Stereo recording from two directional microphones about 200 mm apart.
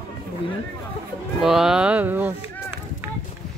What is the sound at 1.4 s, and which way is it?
Speech, centre (ahead or behind).